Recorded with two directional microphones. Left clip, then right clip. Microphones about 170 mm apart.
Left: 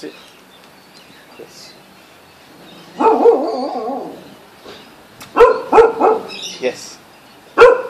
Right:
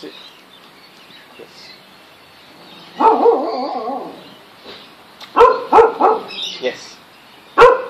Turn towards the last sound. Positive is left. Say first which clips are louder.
# left 1 dB
turn(degrees=45)  # may be behind; listen again after turning